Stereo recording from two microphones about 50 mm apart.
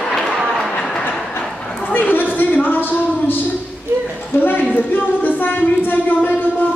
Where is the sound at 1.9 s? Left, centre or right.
Left.